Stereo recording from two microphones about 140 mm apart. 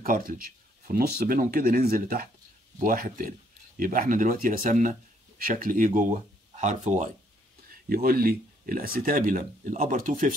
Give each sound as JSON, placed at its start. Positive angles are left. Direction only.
{"t": 0.0, "sound": "speech", "side_deg": -85}
{"t": 2.8, "sound": "speech", "side_deg": -80}
{"t": 5.4, "sound": "speech", "side_deg": -80}
{"t": 7.9, "sound": "speech", "side_deg": -90}